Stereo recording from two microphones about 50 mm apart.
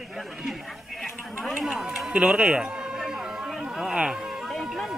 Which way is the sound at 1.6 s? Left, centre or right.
Centre.